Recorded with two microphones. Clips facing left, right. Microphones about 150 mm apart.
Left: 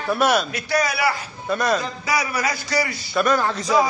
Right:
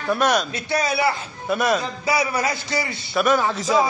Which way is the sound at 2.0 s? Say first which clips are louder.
Right 2 dB; 25° right (ahead or behind).